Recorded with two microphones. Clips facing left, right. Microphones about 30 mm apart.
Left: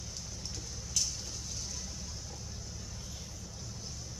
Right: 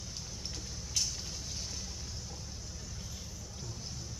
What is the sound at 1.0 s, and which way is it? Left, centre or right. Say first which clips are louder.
Fire: even; centre.